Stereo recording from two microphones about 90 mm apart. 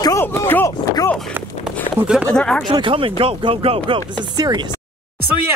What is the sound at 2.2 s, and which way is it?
Speech, 10° left (ahead or behind).